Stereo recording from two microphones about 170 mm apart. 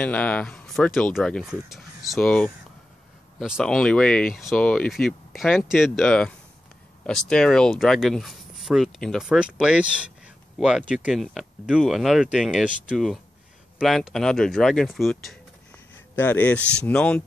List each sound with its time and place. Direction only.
0.0 s speech: 10° left (ahead or behind)